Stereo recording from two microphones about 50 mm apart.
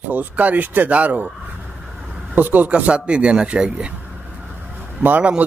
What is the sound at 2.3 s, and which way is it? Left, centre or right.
Speech, right.